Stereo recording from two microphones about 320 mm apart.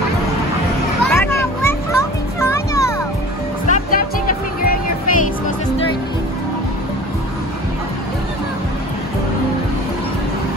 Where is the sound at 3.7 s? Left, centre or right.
Left.